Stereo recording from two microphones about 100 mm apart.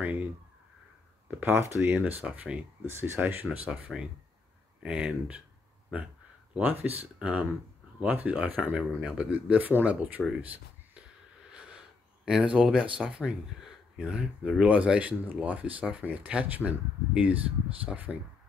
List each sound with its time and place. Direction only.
0.0 s a sound: 15° right (ahead or behind)
1.4 s speech: 20° right (ahead or behind)
3.6 s speech: 10° right (ahead or behind)
12.3 s speech: 10° right (ahead or behind)